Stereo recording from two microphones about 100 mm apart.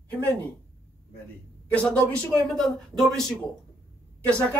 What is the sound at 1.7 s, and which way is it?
A man's voice, 15° left (ahead or behind).